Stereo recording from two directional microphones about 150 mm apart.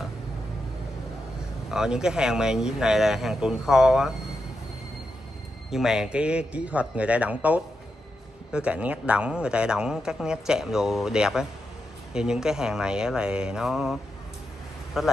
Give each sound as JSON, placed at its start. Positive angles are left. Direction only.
{"t": 1.7, "sound": "speech", "side_deg": -5}
{"t": 5.7, "sound": "a man's voice", "side_deg": -5}
{"t": 15.0, "sound": "speech", "side_deg": -5}